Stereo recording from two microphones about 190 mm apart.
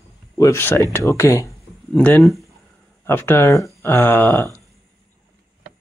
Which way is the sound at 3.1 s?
10° left (ahead or behind).